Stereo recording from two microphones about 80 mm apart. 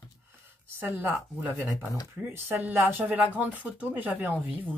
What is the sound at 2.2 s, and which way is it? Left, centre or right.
Speech, centre.